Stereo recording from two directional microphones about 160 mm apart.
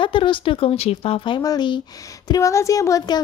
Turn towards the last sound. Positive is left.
turn(degrees=20)  # may be behind; listen again after turning